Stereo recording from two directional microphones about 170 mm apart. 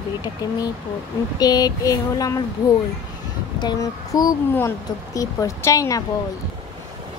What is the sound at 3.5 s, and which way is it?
Speech, 25° left (ahead or behind).